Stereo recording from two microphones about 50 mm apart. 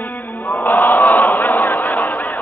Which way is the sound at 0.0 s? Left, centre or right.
Left.